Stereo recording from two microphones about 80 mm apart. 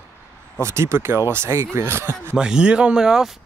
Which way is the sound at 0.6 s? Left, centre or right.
Right.